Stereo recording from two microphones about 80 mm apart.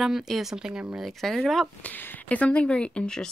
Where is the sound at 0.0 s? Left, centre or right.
Centre.